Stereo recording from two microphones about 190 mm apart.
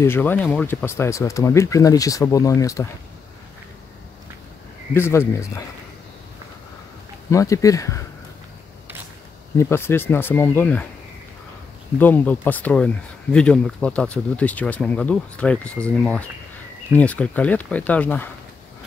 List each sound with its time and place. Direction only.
0.0 s speech: 10° left (ahead or behind)
4.9 s speech: 15° left (ahead or behind)
7.2 s speech: 15° left (ahead or behind)
9.6 s speech: 15° left (ahead or behind)
12.0 s speech: 10° left (ahead or behind)